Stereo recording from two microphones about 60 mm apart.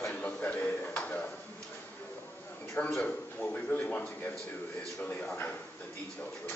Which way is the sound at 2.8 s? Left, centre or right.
Left.